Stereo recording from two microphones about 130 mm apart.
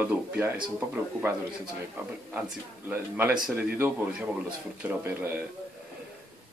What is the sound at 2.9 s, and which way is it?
Speech, 15° right (ahead or behind).